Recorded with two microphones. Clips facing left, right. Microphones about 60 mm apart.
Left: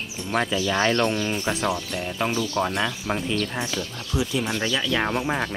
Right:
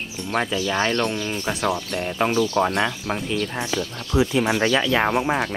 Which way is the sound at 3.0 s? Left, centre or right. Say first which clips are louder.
Right 1 dB; centre.